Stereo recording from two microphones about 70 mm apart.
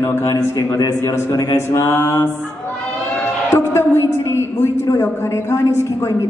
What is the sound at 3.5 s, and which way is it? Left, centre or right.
A woman's voice, left.